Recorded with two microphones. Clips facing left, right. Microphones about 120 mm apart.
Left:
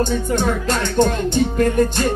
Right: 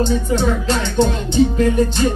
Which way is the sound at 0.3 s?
50° left (ahead or behind).